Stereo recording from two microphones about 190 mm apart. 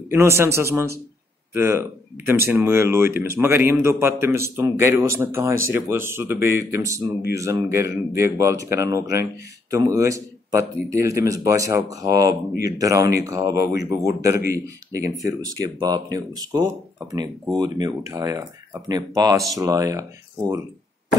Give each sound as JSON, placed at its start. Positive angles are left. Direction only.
{"t": 0.1, "sound": "speech", "side_deg": -15}